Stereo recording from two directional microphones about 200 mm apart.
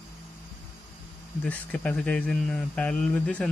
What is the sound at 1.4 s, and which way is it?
Speech, 5° left (ahead or behind).